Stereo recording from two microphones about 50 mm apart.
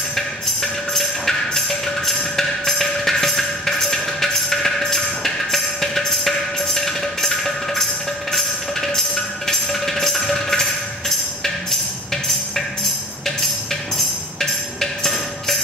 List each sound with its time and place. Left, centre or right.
0.1 s music: centre
14.4 s music: centre